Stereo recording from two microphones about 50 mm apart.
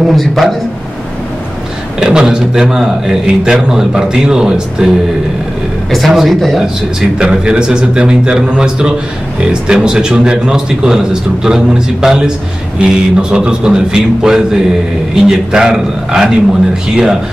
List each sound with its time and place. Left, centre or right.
0.0 s speech: centre
2.0 s a man's voice: centre
5.9 s speech: centre
6.6 s a man's voice: centre